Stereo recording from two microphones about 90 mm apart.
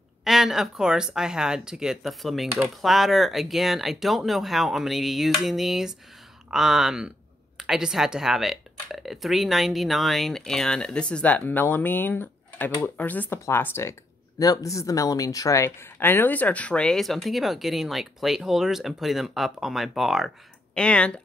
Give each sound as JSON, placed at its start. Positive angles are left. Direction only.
{"t": 0.2, "sound": "speech", "side_deg": -5}
{"t": 14.4, "sound": "speech", "side_deg": 40}
{"t": 20.7, "sound": "speech", "side_deg": 10}